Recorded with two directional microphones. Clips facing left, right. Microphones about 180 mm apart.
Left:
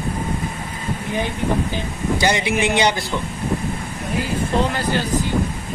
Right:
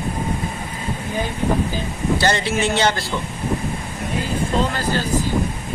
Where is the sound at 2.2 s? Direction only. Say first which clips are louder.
Left 2 dB; 15° left (ahead or behind).